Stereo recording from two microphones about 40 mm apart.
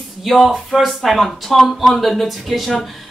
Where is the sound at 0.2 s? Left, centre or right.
Centre.